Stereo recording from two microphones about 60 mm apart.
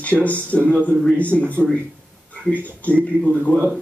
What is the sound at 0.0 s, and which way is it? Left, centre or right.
Speech, left.